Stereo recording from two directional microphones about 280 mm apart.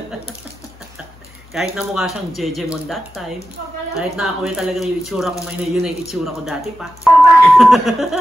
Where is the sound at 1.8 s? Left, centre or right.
Centre.